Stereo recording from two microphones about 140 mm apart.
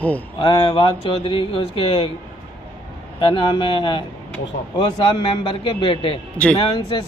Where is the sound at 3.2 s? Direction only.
35° left (ahead or behind).